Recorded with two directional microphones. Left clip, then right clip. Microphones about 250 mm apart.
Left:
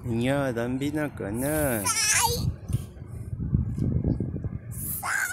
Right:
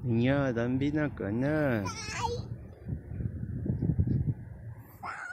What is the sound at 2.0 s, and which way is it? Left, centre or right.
Goat, left.